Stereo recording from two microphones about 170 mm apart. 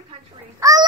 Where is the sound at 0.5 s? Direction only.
20° right (ahead or behind).